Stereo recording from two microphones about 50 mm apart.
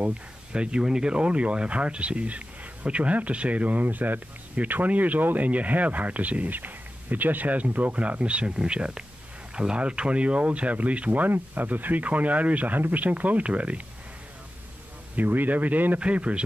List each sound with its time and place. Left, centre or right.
0.0 s speech: centre
15.1 s speech: right